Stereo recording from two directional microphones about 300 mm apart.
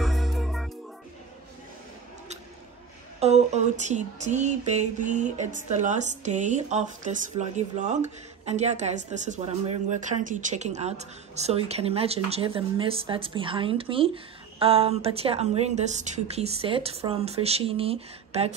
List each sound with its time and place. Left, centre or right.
0.0 s music: centre
3.2 s speech: right